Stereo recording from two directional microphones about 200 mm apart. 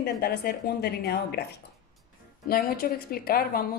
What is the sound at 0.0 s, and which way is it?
Speech, 50° left (ahead or behind).